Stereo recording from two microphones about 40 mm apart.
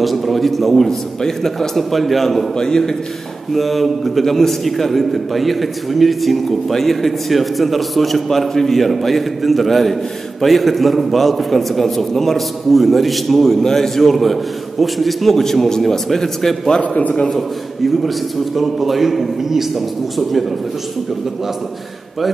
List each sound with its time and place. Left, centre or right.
0.0 s a sound: centre
0.8 s a man's voice: centre
1.8 s a man's voice: centre
2.5 s a man's voice: centre
3.5 s a man's voice: centre
17.8 s a man's voice: centre